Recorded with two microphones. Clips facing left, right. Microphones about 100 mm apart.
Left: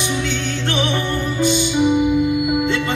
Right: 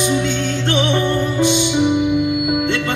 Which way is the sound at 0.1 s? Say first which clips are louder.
Right 4 dB; 35° right (ahead or behind).